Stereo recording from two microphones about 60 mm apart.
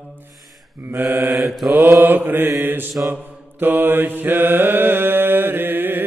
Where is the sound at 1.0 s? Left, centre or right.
Right.